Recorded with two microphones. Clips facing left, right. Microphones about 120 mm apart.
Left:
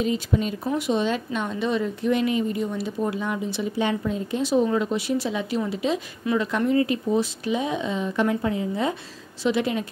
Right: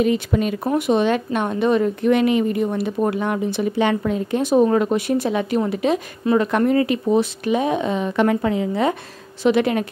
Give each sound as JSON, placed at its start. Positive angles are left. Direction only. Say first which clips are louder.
{"t": 0.0, "sound": "a woman's voice", "louder": "right 5 dB", "side_deg": -65}
{"t": 9.4, "sound": "a woman's voice", "louder": "right 6 dB", "side_deg": -60}